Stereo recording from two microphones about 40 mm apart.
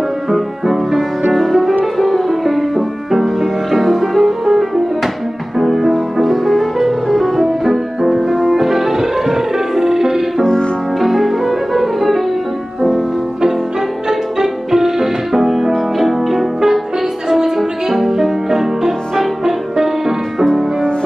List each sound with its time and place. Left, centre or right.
0.3 s music: centre
7.6 s music: centre
10.4 s music: centre
11.0 s music: centre